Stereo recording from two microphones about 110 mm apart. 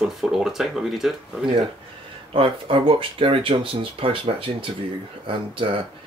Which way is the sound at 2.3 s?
55° right (ahead or behind).